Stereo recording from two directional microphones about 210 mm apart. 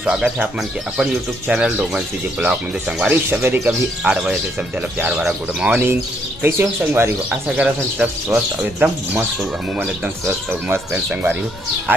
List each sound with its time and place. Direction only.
0.0 s speech: 5° right (ahead or behind)
1.5 s speech: 5° right (ahead or behind)